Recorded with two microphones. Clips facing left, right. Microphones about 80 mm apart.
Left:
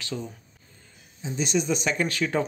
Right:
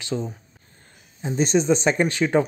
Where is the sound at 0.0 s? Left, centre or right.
Right.